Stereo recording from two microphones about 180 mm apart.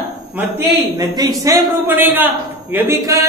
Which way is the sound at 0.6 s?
20° right (ahead or behind).